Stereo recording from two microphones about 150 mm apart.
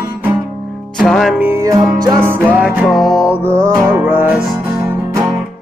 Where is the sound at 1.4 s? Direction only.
20° right (ahead or behind).